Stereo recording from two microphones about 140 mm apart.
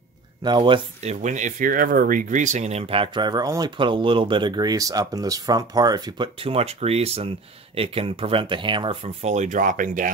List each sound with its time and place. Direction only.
0.4 s speech: 35° right (ahead or behind)
1.0 s speech: 60° right (ahead or behind)